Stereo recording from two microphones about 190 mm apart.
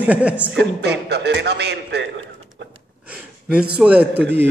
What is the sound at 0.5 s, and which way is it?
A man's voice, 65° right (ahead or behind).